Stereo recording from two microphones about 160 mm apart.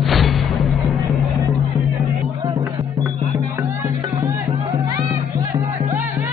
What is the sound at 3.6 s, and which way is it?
Music, 20° right (ahead or behind).